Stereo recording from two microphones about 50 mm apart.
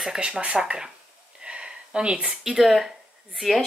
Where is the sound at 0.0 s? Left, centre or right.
Centre.